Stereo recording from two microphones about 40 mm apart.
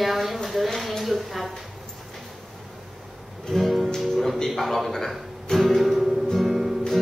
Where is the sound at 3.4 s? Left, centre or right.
Centre.